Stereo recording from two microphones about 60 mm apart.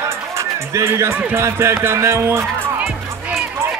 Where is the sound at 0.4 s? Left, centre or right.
Right.